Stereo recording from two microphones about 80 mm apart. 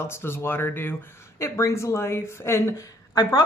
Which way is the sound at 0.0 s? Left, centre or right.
Left.